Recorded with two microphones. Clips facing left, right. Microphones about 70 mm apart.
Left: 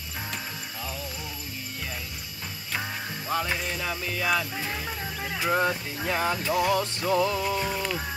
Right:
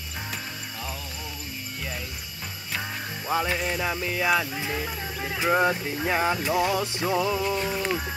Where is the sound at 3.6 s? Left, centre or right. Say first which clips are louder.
Right 4 dB; centre.